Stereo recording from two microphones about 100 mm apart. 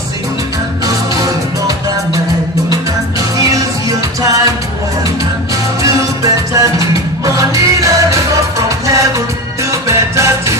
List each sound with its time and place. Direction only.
2.7 s music: 35° right (ahead or behind)
5.8 s music: 35° right (ahead or behind)